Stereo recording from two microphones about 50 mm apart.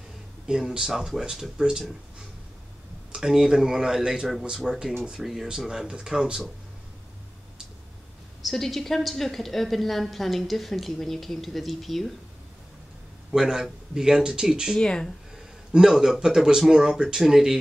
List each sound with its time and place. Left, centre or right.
0.5 s speech: centre
3.2 s speech: centre
8.5 s a woman's voice: centre
13.3 s speech: centre
14.8 s speech: centre
15.3 s speech: centre